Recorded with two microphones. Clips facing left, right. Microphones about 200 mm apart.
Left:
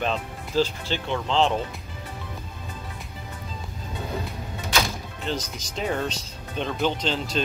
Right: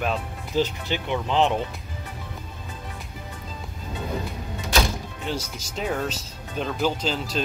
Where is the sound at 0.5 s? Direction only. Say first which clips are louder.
Even; 15° right (ahead or behind).